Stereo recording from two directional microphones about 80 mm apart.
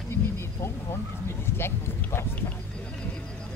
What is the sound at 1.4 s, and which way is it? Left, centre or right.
Speech, left.